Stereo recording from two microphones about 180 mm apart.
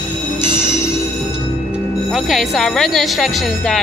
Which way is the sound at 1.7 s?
Centre (ahead or behind).